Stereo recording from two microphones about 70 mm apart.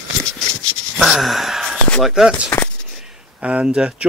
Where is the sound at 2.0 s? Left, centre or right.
Centre.